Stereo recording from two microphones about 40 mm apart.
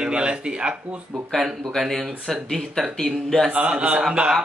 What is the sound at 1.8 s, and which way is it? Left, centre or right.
Speech, centre.